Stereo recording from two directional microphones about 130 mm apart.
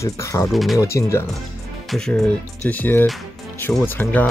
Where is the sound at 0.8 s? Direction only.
20° left (ahead or behind).